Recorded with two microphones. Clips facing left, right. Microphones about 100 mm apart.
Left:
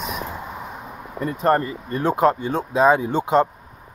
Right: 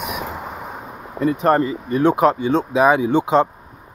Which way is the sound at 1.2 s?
80° right.